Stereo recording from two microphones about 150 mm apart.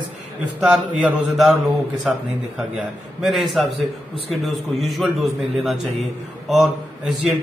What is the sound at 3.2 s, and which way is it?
A man's voice, centre (ahead or behind).